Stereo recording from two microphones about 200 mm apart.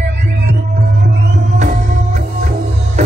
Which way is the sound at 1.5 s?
35° right (ahead or behind).